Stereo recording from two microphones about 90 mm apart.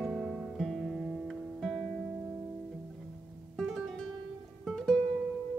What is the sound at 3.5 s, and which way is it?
Music, 5° left (ahead or behind).